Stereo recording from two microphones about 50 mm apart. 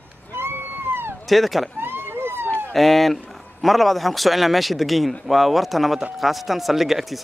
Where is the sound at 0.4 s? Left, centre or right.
Right.